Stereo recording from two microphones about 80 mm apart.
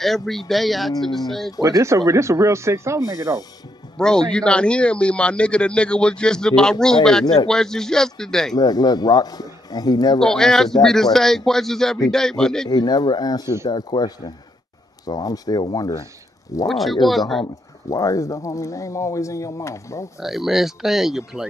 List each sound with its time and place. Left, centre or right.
0.0 s speech: centre
1.6 s speech: right
4.0 s speech: centre
8.5 s speech: left
10.2 s speech: centre
12.6 s speech: left
16.6 s speech: centre
17.8 s speech: left
20.2 s speech: centre